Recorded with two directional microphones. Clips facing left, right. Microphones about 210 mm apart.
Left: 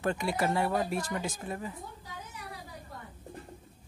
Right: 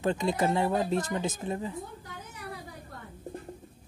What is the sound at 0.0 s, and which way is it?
Speech, 20° right (ahead or behind).